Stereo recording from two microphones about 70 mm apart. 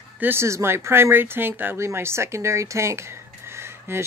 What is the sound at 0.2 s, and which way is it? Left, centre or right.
Speech, right.